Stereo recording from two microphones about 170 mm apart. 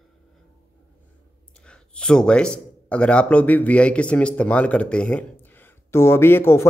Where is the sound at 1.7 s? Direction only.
5° left (ahead or behind).